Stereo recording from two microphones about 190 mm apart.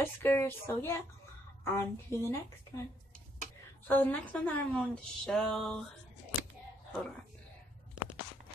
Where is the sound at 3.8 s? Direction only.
10° left (ahead or behind).